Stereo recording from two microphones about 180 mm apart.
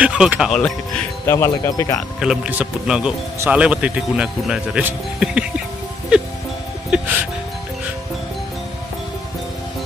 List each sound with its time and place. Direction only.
0.0 s speech: 5° right (ahead or behind)
1.2 s speech: 15° left (ahead or behind)
2.0 s speech: 5° right (ahead or behind)